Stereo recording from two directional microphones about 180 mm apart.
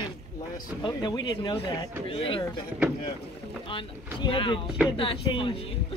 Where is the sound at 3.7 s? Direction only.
30° left (ahead or behind).